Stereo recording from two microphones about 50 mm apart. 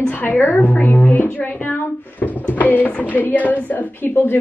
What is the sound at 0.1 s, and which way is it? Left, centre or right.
A woman's voice, left.